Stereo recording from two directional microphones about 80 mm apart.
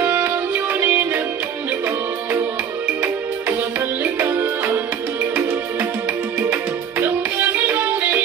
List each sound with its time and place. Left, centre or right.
0.0 s music: right
4.0 s music: right
6.5 s music: right